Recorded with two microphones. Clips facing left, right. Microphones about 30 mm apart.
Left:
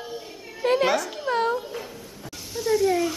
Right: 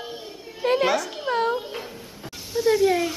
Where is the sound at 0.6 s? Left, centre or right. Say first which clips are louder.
Even; centre.